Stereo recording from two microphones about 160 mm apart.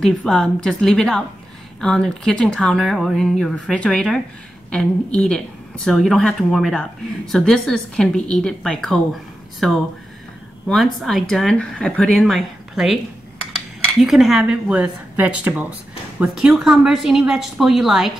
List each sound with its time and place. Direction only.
0.0 s speech: centre (ahead or behind)